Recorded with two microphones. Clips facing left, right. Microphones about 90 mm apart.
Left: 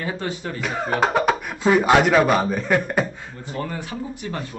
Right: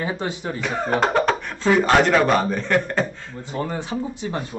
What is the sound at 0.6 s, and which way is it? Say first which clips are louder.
Speech: right 1 dB; 5° left (ahead or behind).